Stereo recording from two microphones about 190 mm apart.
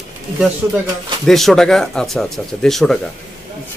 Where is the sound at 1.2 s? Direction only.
Centre (ahead or behind).